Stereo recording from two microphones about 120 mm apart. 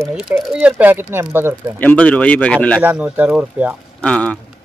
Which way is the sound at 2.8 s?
10° right (ahead or behind).